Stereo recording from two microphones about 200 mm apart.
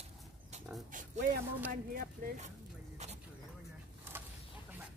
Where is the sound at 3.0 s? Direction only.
35° right (ahead or behind).